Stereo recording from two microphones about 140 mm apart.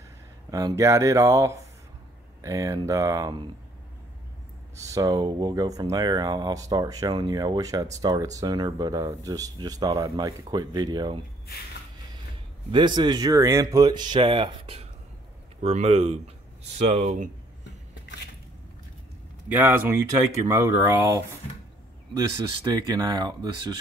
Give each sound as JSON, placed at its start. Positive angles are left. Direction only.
{"t": 0.5, "sound": "speech", "side_deg": -25}
{"t": 4.7, "sound": "speech", "side_deg": -25}
{"t": 12.7, "sound": "speech", "side_deg": -30}
{"t": 19.5, "sound": "speech", "side_deg": -15}
{"t": 22.7, "sound": "speech", "side_deg": -25}